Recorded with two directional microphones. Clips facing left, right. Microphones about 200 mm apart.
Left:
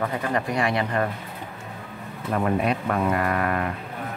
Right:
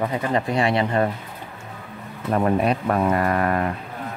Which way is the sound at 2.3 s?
35° right (ahead or behind).